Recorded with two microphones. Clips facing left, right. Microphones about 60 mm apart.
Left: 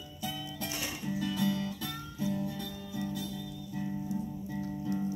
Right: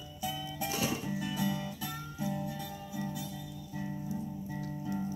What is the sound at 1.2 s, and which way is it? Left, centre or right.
Music, centre.